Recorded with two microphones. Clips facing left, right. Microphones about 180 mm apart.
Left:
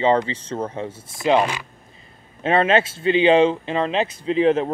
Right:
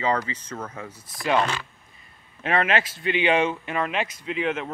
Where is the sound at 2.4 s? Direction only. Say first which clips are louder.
Left 6 dB; 25° left (ahead or behind).